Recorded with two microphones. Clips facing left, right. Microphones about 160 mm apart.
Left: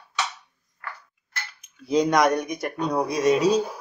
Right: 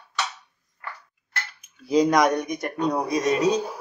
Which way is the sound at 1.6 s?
Centre (ahead or behind).